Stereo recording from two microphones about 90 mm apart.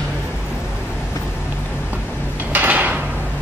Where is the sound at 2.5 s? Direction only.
20° right (ahead or behind).